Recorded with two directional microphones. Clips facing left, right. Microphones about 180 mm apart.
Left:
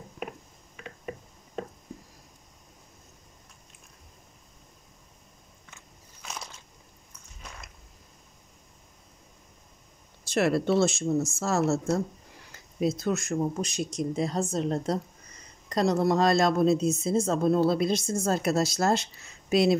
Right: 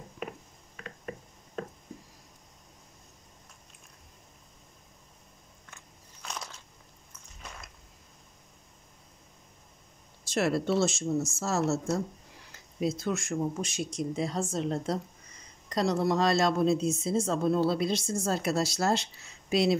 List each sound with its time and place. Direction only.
10.2 s speech: 60° left (ahead or behind)
13.0 s a woman's voice: 40° left (ahead or behind)